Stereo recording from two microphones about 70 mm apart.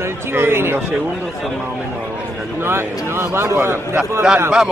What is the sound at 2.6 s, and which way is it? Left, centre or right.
Speech, right.